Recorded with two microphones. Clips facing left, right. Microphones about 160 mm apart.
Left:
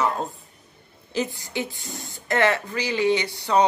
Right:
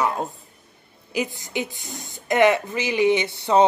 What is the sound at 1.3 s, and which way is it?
A woman's voice, 20° right (ahead or behind).